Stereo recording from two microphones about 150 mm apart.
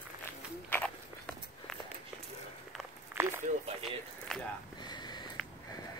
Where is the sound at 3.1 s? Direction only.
15° right (ahead or behind).